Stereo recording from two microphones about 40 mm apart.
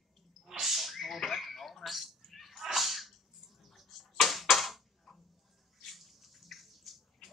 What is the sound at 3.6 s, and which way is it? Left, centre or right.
Arrow, centre.